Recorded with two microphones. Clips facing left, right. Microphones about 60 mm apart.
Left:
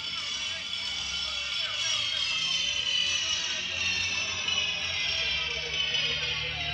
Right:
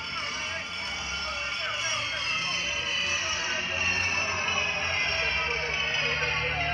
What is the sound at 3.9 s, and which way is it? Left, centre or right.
Music, right.